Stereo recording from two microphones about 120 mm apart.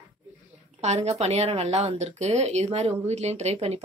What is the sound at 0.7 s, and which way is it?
Speech, 65° right (ahead or behind).